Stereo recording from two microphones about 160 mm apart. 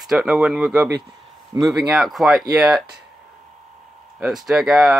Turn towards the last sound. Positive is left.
turn(degrees=-5)  # may be behind; listen again after turning